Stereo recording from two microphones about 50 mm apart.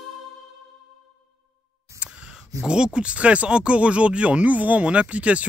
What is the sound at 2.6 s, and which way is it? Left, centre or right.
Speech, centre.